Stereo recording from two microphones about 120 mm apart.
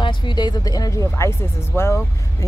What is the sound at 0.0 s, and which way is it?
Speech, 40° left (ahead or behind).